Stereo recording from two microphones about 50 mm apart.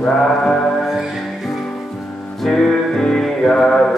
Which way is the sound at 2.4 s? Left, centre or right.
Centre.